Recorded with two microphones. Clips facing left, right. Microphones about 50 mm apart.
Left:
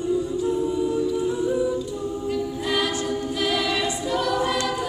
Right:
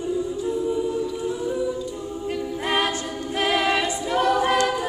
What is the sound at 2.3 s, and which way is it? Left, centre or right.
A capella, right.